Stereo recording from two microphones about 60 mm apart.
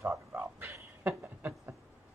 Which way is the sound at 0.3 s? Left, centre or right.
Right.